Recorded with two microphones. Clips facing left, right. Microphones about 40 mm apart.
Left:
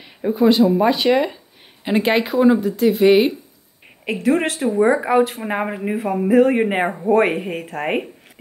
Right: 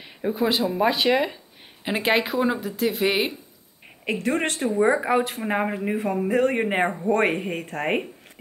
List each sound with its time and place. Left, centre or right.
0.0 s speech: centre